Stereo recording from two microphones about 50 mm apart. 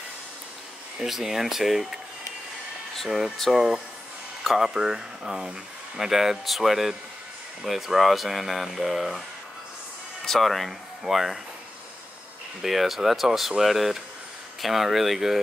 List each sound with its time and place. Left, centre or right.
1.0 s speech: centre
3.5 s speech: centre
10.2 s speech: centre
12.6 s speech: centre